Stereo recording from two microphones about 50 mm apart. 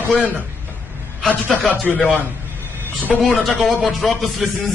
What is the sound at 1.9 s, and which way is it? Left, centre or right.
Speech, centre.